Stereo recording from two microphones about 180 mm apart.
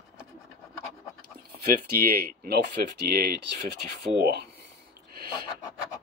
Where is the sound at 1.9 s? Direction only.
60° right (ahead or behind).